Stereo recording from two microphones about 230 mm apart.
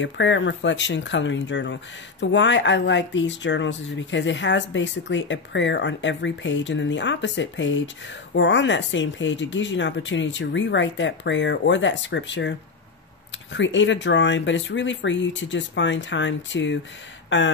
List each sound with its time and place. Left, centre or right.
0.0 s speech: left